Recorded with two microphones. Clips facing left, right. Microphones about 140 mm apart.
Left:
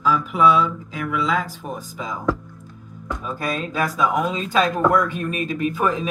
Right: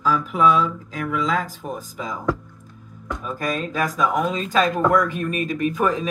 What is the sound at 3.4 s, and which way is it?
Speech, 40° right (ahead or behind).